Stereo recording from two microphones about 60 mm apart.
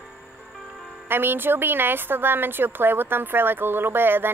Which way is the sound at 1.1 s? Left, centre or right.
Right.